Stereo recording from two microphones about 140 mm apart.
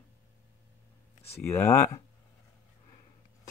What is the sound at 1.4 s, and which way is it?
Speech, 20° left (ahead or behind).